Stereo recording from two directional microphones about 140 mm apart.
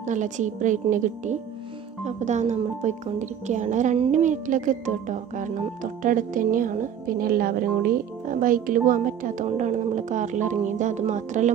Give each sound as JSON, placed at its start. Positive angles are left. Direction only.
{"t": 0.0, "sound": "speech", "side_deg": -60}